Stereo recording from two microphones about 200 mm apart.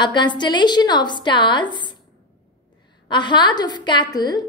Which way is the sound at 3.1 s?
20° left (ahead or behind).